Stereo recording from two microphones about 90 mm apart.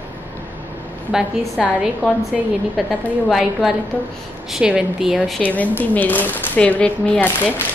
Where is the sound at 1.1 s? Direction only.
10° right (ahead or behind).